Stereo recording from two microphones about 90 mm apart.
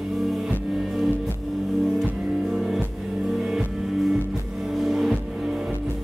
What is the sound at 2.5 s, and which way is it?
Music, 5° right (ahead or behind).